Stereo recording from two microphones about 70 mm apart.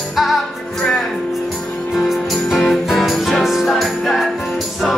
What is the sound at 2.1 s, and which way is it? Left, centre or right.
Music, centre.